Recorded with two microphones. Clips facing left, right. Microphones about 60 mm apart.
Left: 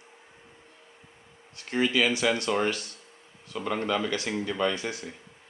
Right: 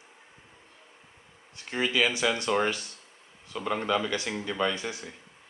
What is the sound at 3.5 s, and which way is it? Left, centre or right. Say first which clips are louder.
A man's voice: even; centre.